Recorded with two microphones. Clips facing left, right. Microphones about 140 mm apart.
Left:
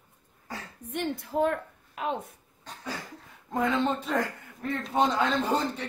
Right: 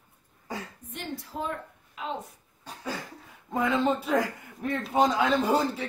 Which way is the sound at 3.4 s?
Centre (ahead or behind).